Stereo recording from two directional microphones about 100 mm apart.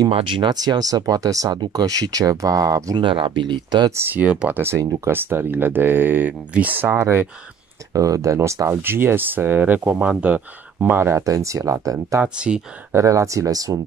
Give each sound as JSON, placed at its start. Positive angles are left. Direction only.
{"t": 0.1, "sound": "speech", "side_deg": -55}
{"t": 3.0, "sound": "speech", "side_deg": -60}
{"t": 3.9, "sound": "speech", "side_deg": -20}
{"t": 4.6, "sound": "speech", "side_deg": -25}
{"t": 7.9, "sound": "speech", "side_deg": -35}
{"t": 11.2, "sound": "speech", "side_deg": -35}
{"t": 12.2, "sound": "speech", "side_deg": -10}
{"t": 12.9, "sound": "speech", "side_deg": -30}